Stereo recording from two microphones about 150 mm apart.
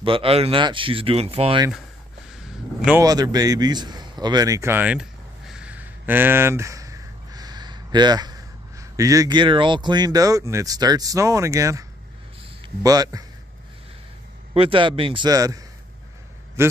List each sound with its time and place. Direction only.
0.0 s speech: 35° right (ahead or behind)
2.3 s a sound: 5° right (ahead or behind)
3.0 s a man's voice: 25° right (ahead or behind)
12.8 s a man's voice: 25° right (ahead or behind)
14.5 s a man's voice: 35° right (ahead or behind); by 16.7 s 15° right (ahead or behind)